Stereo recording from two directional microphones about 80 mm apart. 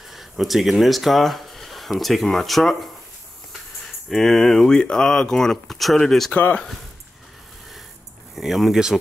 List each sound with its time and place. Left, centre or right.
0.1 s speech: centre
4.1 s speech: centre
6.3 s speech: centre
8.4 s speech: centre